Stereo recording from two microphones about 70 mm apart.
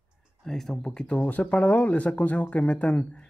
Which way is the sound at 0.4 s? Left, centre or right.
Centre.